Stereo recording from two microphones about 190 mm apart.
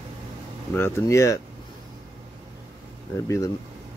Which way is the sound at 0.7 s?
15° left (ahead or behind).